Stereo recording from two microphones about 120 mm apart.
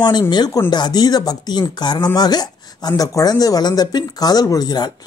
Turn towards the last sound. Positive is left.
turn(degrees=35)  # may be behind; listen again after turning